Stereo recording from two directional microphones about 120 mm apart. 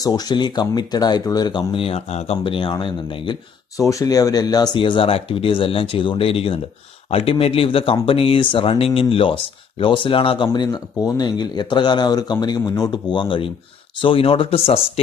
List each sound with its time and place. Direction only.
0.0 s speech: 35° left (ahead or behind); by 2.3 s 60° left (ahead or behind)
2.4 s speech: 45° left (ahead or behind)
3.7 s speech: 30° left (ahead or behind); by 14.8 s 50° left (ahead or behind)